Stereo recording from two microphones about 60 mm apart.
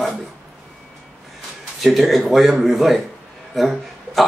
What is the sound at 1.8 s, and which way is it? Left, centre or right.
Speech, centre.